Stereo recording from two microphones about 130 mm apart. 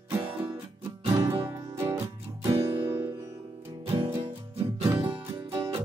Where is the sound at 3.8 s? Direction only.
45° right (ahead or behind).